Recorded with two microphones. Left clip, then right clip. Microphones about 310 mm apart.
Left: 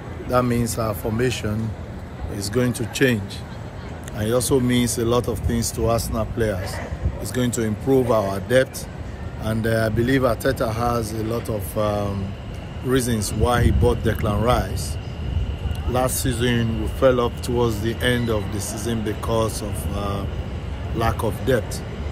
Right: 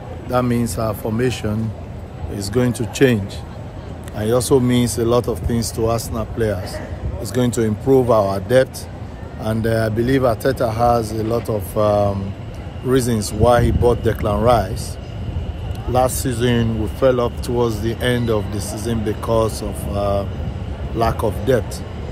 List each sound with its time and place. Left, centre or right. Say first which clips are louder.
0.3 s speech: right 1 dB; centre
4.2 s speech: right 4 dB; centre
15.9 s speech: right 5 dB; centre